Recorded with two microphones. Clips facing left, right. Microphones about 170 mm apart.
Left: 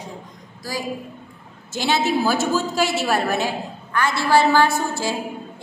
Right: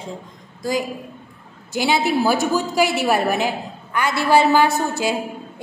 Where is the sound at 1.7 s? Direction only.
15° right (ahead or behind).